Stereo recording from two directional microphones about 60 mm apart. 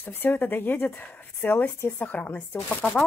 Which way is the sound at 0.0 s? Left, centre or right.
Left.